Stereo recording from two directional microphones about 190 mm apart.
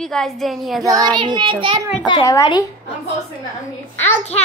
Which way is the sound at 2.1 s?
20° left (ahead or behind).